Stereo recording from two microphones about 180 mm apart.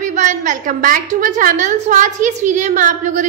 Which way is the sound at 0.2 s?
45° right (ahead or behind).